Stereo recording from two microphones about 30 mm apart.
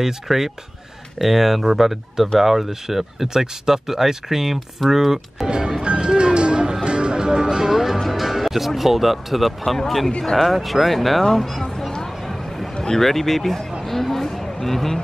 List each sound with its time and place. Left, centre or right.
0.0 s speech: centre
5.5 s speech: right
5.9 s music: right; by 8.0 s centre
8.1 s speech: centre
9.8 s speech: centre
12.8 s speech: centre